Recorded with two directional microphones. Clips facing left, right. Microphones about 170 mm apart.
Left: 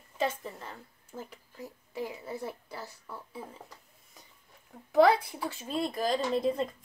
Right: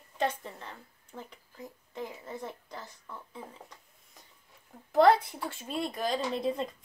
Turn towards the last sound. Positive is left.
turn(degrees=0)  # may be behind; listen again after turning